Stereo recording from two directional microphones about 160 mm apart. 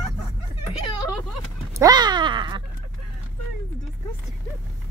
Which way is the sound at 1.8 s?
25° right (ahead or behind).